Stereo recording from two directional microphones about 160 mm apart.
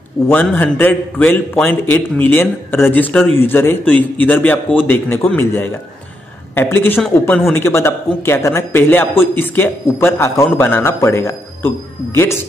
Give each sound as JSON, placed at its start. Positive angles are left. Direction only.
{"t": 0.3, "sound": "a man's voice", "side_deg": 10}